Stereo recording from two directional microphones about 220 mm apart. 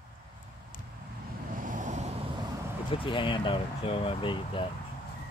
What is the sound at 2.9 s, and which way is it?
Speech, 25° left (ahead or behind).